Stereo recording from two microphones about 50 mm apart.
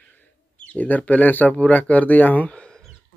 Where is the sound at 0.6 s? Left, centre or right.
Left.